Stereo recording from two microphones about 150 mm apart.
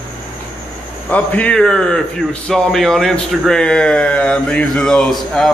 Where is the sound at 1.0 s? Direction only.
10° left (ahead or behind).